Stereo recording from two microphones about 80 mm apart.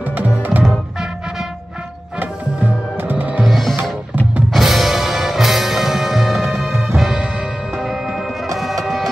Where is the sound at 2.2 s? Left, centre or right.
Right.